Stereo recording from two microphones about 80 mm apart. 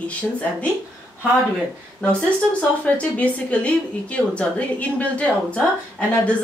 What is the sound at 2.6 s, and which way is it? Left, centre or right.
A woman's voice, centre.